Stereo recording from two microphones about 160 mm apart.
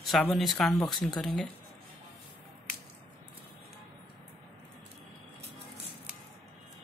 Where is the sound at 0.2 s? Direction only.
Centre (ahead or behind).